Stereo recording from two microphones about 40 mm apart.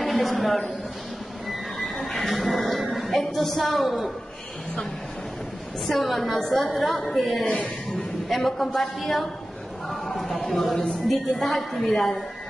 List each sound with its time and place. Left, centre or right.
0.0 s a man's voice: centre
1.8 s a sound: centre
3.3 s a woman's voice: centre
5.9 s a woman's voice: centre
7.4 s speech: left
7.9 s a woman's voice: centre